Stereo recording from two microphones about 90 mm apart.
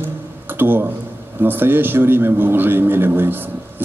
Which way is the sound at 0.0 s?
25° right (ahead or behind).